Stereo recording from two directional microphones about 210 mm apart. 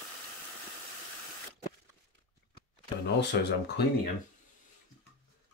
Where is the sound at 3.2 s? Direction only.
50° left (ahead or behind).